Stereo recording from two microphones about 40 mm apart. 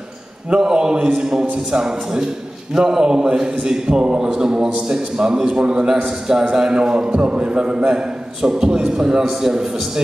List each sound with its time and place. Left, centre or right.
0.5 s a man's voice: centre